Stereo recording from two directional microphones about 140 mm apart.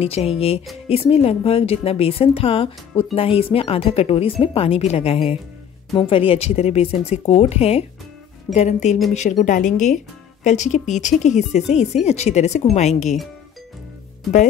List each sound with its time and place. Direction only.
0.0 s speech: 45° left (ahead or behind)
8.5 s speech: 60° left (ahead or behind)